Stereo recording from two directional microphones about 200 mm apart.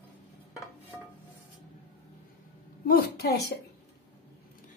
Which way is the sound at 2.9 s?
50° left (ahead or behind).